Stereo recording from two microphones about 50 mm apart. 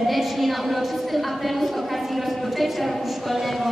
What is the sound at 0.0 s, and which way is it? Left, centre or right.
A woman's voice, centre.